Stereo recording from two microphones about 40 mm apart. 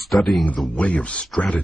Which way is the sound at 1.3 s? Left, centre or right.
Centre.